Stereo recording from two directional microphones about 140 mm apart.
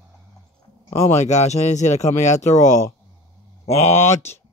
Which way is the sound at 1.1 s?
55° left (ahead or behind).